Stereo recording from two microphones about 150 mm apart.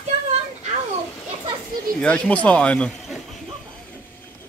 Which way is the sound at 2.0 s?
5° left (ahead or behind).